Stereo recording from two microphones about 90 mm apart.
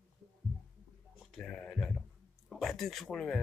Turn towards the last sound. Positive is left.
turn(degrees=5)  # may be behind; listen again after turning